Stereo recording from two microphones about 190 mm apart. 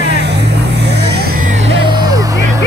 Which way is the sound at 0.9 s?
60° right (ahead or behind).